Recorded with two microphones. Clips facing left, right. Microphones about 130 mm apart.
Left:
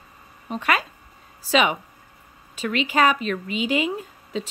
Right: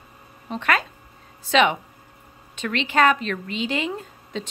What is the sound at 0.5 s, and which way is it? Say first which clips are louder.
Speech: even; 10° left (ahead or behind).